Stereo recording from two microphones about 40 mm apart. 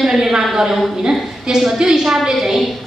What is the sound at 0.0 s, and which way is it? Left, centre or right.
A woman's voice, centre.